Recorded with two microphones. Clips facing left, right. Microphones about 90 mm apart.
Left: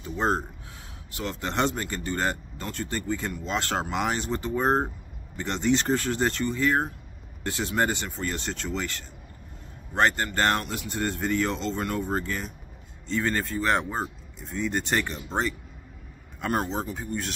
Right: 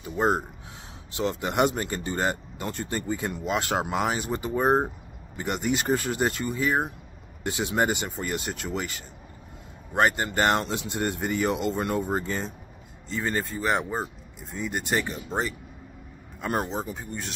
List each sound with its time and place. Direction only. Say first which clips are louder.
0.0 s speech: right 2 dB; 10° right (ahead or behind)
12.3 s speech: right 2 dB; 25° right (ahead or behind)
13.1 s speech: left 2 dB; 10° right (ahead or behind)